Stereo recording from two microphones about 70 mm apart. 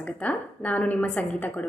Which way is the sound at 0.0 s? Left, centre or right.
Left.